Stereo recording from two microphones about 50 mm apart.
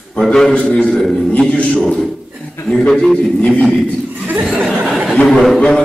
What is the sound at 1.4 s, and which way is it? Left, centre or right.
Speech, left.